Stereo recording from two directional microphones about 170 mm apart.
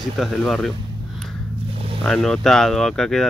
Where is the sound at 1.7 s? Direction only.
35° right (ahead or behind).